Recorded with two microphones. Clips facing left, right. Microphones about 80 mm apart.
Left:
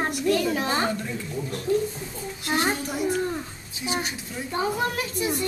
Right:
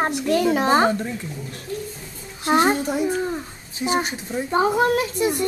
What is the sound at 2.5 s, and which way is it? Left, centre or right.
Speech, right.